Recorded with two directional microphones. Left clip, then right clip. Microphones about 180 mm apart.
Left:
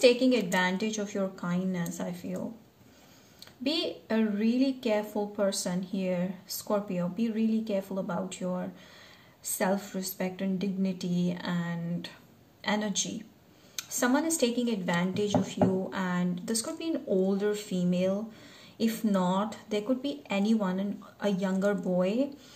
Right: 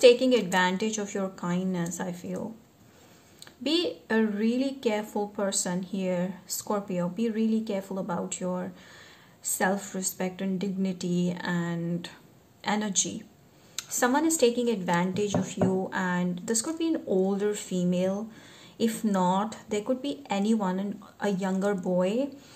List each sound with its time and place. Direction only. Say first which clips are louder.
0.0 s a woman's voice: right 4 dB; 35° right (ahead or behind)
3.6 s a woman's voice: right 3 dB; 35° right (ahead or behind)